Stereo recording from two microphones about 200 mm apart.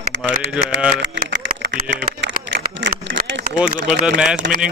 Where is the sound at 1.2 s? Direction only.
60° right (ahead or behind).